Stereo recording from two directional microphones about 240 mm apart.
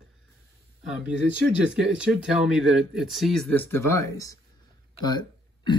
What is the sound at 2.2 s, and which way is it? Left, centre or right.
Speech, centre.